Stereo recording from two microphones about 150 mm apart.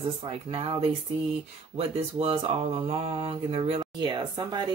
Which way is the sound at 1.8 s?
40° right (ahead or behind).